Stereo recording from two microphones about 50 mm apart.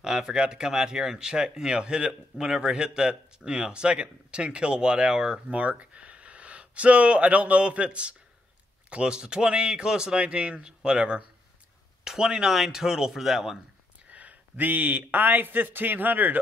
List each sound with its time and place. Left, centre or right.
0.0 s speech: centre
5.5 s a man's voice: right; by 13.6 s centre
14.1 s a man's voice: right